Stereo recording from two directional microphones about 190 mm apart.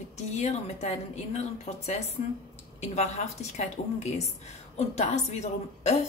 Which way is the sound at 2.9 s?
35° left (ahead or behind).